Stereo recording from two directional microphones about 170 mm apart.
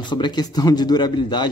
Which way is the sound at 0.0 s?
25° left (ahead or behind).